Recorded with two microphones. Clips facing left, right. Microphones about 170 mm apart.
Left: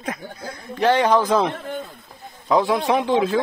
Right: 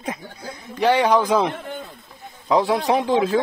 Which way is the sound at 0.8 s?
10° right (ahead or behind).